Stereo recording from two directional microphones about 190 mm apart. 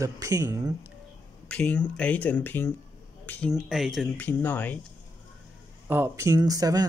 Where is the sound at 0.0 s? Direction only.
15° right (ahead or behind).